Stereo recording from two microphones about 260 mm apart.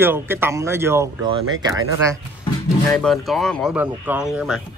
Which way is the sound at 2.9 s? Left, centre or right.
Centre.